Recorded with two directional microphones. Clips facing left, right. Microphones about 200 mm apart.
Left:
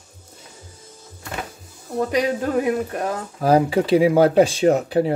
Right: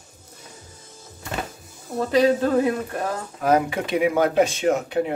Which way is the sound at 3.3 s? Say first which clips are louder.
Left 4 dB; 30° left (ahead or behind).